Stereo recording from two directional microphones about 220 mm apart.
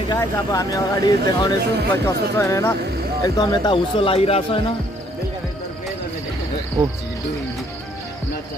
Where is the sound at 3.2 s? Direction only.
15° left (ahead or behind).